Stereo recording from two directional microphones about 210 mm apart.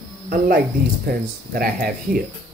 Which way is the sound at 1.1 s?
45° right (ahead or behind).